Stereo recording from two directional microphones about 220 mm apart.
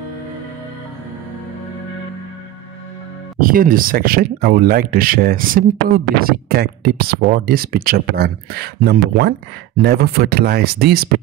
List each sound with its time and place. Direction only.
3.3 s speech: 40° right (ahead or behind)